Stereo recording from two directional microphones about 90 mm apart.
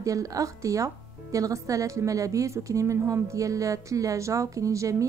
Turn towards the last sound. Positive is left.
turn(degrees=-35)  # may be behind; listen again after turning